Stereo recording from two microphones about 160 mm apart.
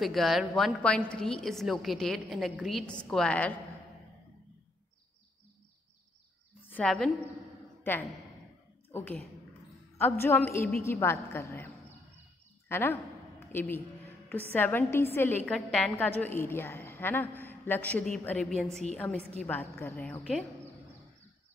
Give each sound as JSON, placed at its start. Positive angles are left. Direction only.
{"t": 0.0, "sound": "a woman's voice", "side_deg": 0}
{"t": 6.7, "sound": "a woman's voice", "side_deg": 5}
{"t": 9.9, "sound": "a woman's voice", "side_deg": 15}